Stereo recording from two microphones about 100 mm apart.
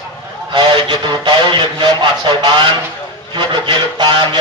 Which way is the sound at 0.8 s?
50° right (ahead or behind).